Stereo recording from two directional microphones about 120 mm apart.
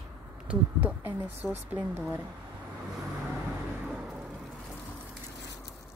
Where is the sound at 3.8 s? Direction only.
10° right (ahead or behind).